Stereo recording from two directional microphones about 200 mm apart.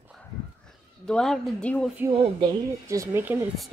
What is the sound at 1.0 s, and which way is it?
Speech, 5° left (ahead or behind).